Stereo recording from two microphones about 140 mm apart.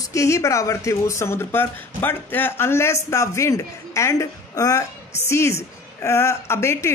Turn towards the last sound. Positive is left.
turn(degrees=20)  # may be behind; listen again after turning